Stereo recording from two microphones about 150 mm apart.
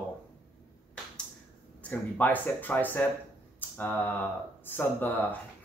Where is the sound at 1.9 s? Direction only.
10° left (ahead or behind).